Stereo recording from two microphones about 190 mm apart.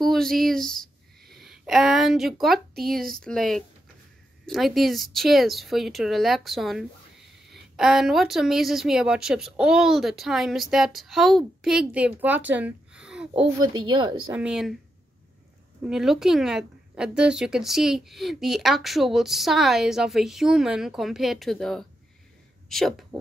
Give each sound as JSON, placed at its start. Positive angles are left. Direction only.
{"t": 0.0, "sound": "a sound", "side_deg": 0}
{"t": 2.8, "sound": "a woman's voice", "side_deg": 0}
{"t": 13.3, "sound": "a woman's voice", "side_deg": -25}
{"t": 14.3, "sound": "a woman's voice", "side_deg": -5}
{"t": 15.9, "sound": "a woman's voice", "side_deg": 0}